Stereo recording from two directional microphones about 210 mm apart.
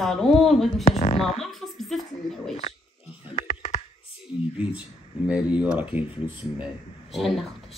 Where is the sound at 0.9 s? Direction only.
30° left (ahead or behind).